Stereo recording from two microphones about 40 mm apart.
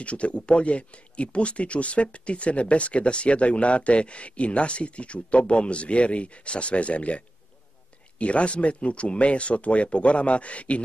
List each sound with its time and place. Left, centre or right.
0.0 s speech: left